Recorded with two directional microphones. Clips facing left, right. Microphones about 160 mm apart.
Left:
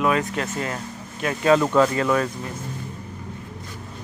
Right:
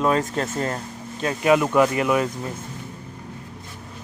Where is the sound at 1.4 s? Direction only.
15° right (ahead or behind).